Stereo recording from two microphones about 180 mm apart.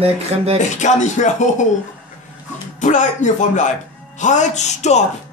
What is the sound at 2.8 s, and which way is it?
Speech, 45° left (ahead or behind).